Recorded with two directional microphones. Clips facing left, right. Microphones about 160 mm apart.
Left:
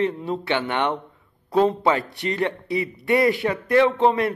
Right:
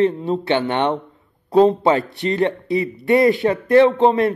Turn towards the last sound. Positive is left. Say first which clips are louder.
# right 5 dB
turn(degrees=-25)  # may be behind; listen again after turning